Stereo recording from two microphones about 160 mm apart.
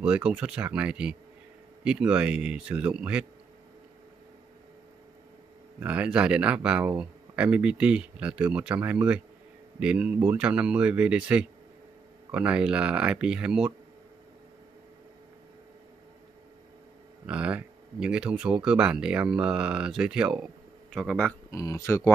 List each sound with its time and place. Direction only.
0.0 s speech: 5° right (ahead or behind)
5.8 s speech: 10° right (ahead or behind)
17.3 s speech: 10° right (ahead or behind)
21.5 s speech: 20° left (ahead or behind)